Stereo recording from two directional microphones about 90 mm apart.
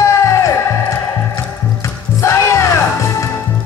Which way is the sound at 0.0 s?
35° left (ahead or behind).